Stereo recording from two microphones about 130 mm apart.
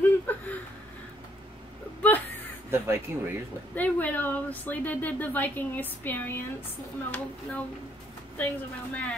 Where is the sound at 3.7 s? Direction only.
10° left (ahead or behind).